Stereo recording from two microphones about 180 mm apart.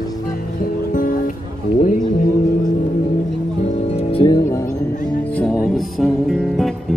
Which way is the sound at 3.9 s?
25° left (ahead or behind).